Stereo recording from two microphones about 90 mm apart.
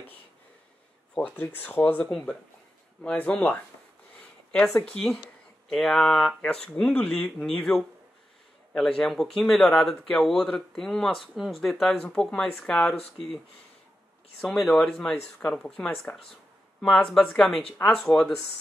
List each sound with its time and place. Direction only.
1.1 s speech: 20° left (ahead or behind)
14.4 s speech: centre (ahead or behind)